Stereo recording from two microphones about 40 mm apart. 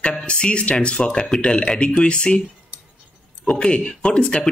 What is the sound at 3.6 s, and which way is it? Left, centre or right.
Speech, left.